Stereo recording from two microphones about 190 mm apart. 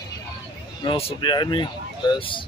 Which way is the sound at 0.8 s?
30° left (ahead or behind).